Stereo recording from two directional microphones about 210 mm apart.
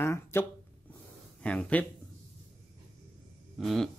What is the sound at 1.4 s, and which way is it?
Speech, 5° left (ahead or behind).